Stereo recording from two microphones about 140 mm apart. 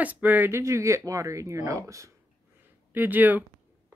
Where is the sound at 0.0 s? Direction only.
10° right (ahead or behind).